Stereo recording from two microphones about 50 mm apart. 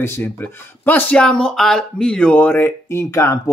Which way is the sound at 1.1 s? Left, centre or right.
Centre.